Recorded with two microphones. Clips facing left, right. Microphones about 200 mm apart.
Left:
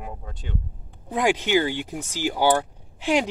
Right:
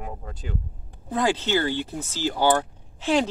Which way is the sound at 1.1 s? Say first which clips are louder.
Left 2 dB; 15° left (ahead or behind).